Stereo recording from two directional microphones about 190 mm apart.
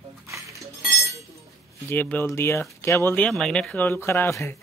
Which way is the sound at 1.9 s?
10° left (ahead or behind).